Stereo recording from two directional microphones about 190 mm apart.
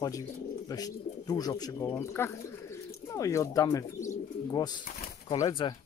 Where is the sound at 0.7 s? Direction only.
20° left (ahead or behind).